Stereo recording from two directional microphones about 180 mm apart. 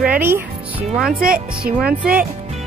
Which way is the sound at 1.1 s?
55° right (ahead or behind).